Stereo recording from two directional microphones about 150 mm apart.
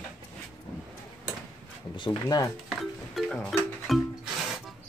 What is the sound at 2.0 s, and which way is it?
Speech, 30° left (ahead or behind).